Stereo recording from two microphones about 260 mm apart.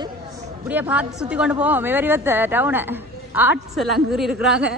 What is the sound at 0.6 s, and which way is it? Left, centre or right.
A woman's voice, centre.